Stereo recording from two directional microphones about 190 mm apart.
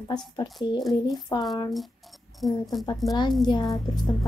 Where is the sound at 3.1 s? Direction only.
20° left (ahead or behind).